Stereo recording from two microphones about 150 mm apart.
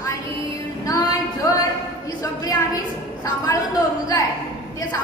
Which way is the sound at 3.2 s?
25° left (ahead or behind).